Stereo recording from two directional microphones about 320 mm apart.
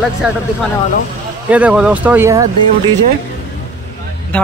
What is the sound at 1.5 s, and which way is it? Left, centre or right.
Speech, centre.